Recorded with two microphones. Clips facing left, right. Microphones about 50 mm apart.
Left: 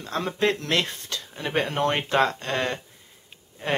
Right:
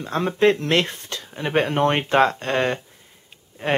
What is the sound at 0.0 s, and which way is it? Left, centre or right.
Speech, right.